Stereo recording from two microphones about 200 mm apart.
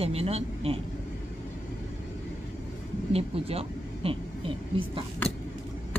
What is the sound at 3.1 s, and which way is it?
Speech, 30° right (ahead or behind).